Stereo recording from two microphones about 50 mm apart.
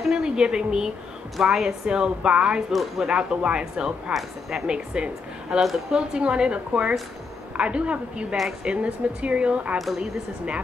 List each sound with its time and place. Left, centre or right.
0.0 s a woman's voice: centre
1.3 s a woman's voice: centre
1.9 s speech: centre
2.7 s a woman's voice: centre
3.1 s speech: centre
4.1 s a woman's voice: centre
4.7 s speech: right
5.6 s a woman's voice: centre
5.9 s speech: centre